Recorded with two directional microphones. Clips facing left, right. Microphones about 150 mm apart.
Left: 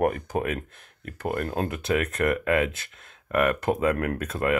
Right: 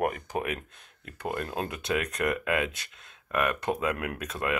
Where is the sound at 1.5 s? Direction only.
35° left (ahead or behind).